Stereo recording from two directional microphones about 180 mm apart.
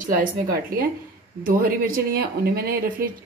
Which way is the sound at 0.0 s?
50° right (ahead or behind).